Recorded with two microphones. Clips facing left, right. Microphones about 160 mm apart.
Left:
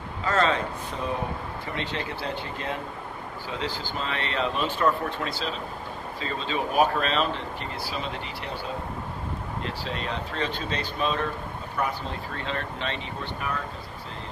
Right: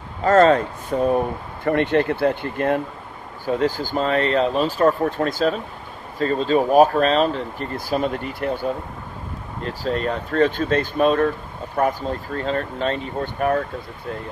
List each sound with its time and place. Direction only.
0.2 s speech: 45° right (ahead or behind)
9.7 s speech: 45° right (ahead or behind)